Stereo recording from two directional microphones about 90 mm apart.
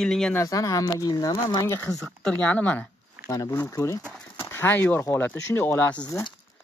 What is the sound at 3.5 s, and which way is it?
Speech, 25° left (ahead or behind).